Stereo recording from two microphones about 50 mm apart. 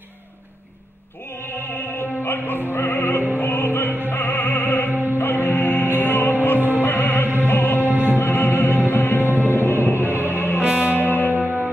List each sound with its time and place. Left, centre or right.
1.8 s music: left
2.7 s opera: left
4.0 s music: left
9.9 s music: right
10.3 s music: left
11.3 s music: right